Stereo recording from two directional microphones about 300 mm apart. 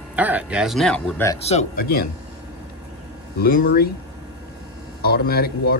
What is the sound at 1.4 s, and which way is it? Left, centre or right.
Speech, left.